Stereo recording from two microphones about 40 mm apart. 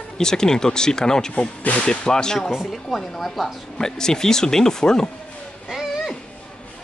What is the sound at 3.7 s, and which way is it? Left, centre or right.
Speech, centre.